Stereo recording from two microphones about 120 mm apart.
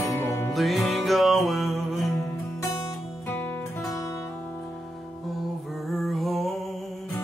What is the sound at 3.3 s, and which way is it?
Music, 15° left (ahead or behind).